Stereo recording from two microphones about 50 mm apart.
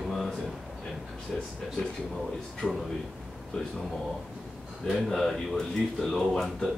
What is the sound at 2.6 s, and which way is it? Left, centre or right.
Speech, right.